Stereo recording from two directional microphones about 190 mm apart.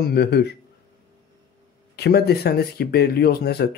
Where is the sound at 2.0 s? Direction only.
60° left (ahead or behind).